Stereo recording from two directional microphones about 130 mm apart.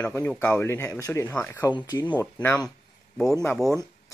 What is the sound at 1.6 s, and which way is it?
Speech, 30° left (ahead or behind).